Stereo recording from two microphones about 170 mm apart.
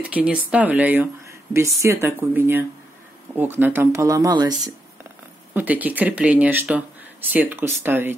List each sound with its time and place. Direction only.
0.0 s speech: 5° right (ahead or behind); by 4.6 s 25° right (ahead or behind)
5.5 s speech: 10° right (ahead or behind)